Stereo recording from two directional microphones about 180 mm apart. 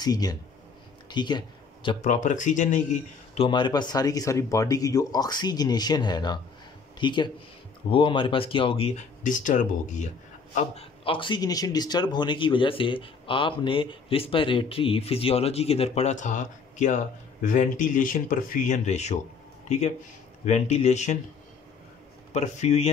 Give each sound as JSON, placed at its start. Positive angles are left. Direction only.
{"t": 0.0, "sound": "speech", "side_deg": 20}
{"t": 1.1, "sound": "a sound", "side_deg": 25}
{"t": 2.0, "sound": "speech", "side_deg": 45}
{"t": 3.4, "sound": "speech", "side_deg": 25}
{"t": 10.5, "sound": "speech", "side_deg": 35}
{"t": 20.4, "sound": "speech", "side_deg": 40}
{"t": 22.3, "sound": "speech", "side_deg": 40}